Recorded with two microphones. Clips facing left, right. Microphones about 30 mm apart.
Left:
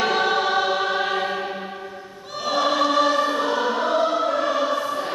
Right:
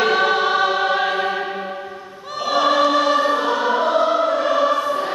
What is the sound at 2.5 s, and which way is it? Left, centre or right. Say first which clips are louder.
Choir: right 4 dB; centre.